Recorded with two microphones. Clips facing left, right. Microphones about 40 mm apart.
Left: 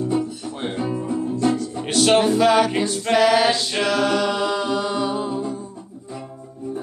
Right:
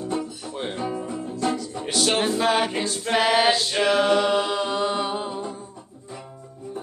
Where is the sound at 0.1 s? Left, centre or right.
Centre.